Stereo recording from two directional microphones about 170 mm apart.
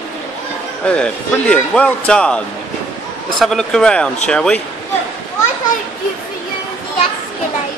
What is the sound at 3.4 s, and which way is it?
Speech, 5° left (ahead or behind).